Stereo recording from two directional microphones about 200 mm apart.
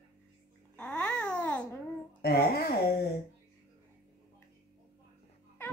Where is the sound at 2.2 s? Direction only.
50° left (ahead or behind).